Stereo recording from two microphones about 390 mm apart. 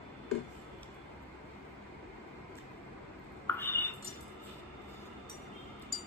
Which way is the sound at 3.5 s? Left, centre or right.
Centre.